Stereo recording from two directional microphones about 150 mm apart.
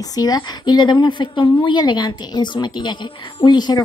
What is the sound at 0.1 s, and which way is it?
A woman's voice, 25° left (ahead or behind).